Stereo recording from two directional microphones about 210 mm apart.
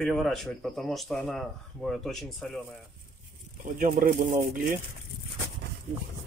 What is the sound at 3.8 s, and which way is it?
Speech, 40° right (ahead or behind).